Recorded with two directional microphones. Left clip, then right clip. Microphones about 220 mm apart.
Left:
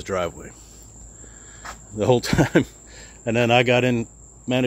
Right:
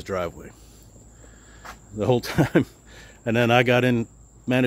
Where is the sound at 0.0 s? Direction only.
Centre (ahead or behind).